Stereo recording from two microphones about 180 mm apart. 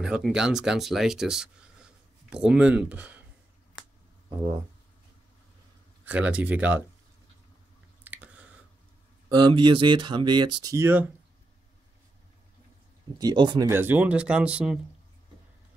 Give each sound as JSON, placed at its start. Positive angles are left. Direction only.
{"t": 0.0, "sound": "speech", "side_deg": -5}
{"t": 6.0, "sound": "speech", "side_deg": -5}
{"t": 8.0, "sound": "chewing", "side_deg": -10}
{"t": 9.3, "sound": "speech", "side_deg": -25}
{"t": 13.2, "sound": "speech", "side_deg": -25}
{"t": 13.7, "sound": "speech", "side_deg": -10}